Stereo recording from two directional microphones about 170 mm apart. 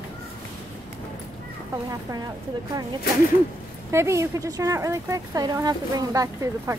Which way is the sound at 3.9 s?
15° right (ahead or behind).